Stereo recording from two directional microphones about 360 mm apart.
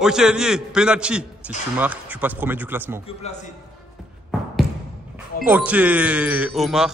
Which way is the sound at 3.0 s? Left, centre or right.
Centre.